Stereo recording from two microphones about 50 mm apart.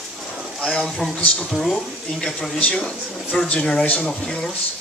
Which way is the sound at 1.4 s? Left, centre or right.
Centre.